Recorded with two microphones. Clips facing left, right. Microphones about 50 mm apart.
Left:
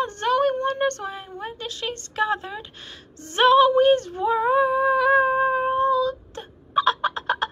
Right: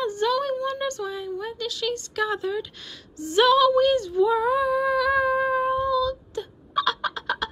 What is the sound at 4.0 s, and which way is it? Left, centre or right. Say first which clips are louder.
Humming: right 2 dB; left.